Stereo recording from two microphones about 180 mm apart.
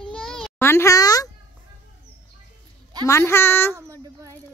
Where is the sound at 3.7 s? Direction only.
20° right (ahead or behind).